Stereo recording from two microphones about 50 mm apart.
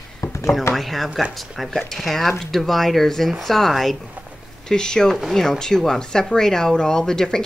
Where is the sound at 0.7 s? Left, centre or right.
Centre.